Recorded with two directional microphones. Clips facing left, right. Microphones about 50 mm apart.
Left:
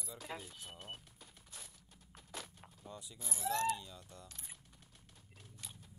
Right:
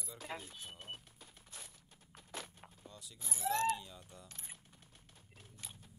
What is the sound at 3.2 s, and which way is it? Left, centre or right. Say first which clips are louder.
Speech: right 1 dB; right.